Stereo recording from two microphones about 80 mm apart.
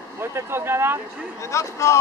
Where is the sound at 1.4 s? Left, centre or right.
Left.